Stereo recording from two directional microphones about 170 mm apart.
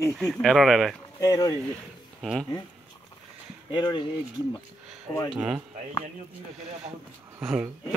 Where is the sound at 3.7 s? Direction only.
25° left (ahead or behind).